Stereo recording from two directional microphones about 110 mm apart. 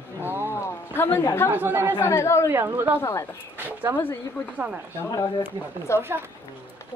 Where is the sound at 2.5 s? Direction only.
20° right (ahead or behind).